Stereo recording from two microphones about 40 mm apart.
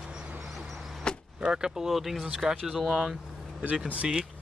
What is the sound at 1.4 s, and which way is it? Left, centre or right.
Speech, right.